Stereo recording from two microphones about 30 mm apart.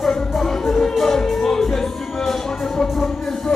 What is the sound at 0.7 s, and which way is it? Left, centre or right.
Music, left.